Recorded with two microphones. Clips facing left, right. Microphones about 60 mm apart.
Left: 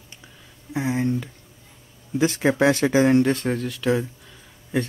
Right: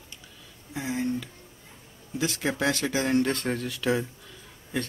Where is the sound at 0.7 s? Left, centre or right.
Left.